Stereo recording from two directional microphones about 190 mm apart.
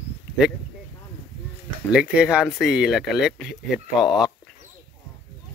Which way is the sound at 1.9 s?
5° right (ahead or behind).